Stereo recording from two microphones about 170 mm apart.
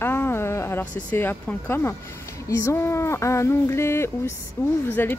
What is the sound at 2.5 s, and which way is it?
A woman's voice, 15° left (ahead or behind).